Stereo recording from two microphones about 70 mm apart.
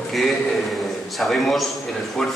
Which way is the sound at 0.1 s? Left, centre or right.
Centre.